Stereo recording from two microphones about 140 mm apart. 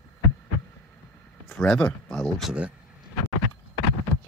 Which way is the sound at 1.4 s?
5° left (ahead or behind).